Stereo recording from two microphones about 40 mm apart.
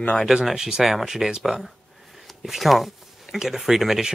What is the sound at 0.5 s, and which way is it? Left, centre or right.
Speech, centre.